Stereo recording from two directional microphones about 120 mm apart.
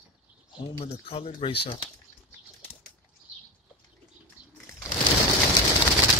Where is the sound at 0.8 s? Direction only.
55° left (ahead or behind).